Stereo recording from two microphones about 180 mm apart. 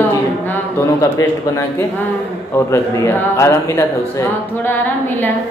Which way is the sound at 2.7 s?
15° left (ahead or behind).